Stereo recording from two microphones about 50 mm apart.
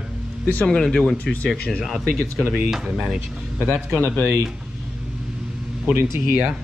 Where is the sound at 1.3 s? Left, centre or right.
Left.